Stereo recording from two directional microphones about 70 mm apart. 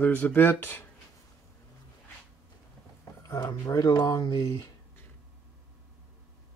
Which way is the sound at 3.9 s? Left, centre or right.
Left.